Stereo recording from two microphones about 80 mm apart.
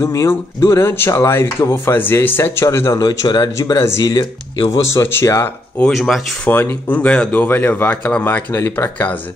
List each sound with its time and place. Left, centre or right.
0.0 s speech: left
3.0 s speech: left
3.7 s speech: left
4.0 s speech: left
4.8 s speech: left
5.2 s speech: left
5.9 s speech: centre
6.4 s speech: left